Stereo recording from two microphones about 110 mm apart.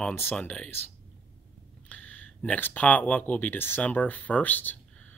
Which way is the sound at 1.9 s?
15° left (ahead or behind).